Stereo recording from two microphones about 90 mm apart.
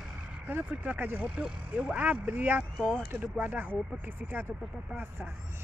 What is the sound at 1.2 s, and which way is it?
Speech, 10° right (ahead or behind).